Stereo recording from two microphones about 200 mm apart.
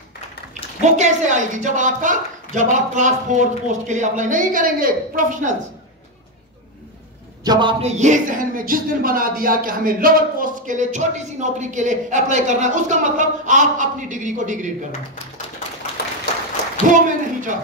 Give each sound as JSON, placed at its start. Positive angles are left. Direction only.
{"t": 0.8, "sound": "speech", "side_deg": -35}
{"t": 7.4, "sound": "a man's voice", "side_deg": -20}
{"t": 7.8, "sound": "speech", "side_deg": -35}
{"t": 16.9, "sound": "a sound", "side_deg": -40}